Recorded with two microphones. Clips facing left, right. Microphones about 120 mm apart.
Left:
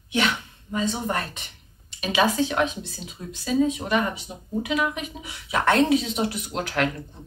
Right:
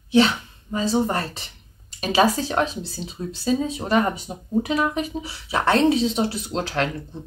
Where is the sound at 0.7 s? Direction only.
30° right (ahead or behind).